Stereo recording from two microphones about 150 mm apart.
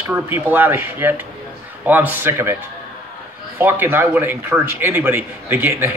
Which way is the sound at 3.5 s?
15° right (ahead or behind).